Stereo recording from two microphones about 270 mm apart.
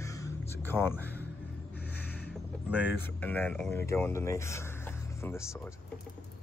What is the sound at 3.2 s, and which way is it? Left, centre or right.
Speech, centre.